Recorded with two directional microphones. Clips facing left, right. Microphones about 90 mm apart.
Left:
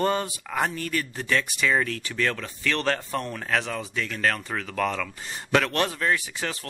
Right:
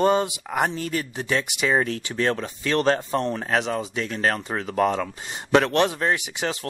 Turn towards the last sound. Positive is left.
turn(degrees=-20)  # may be behind; listen again after turning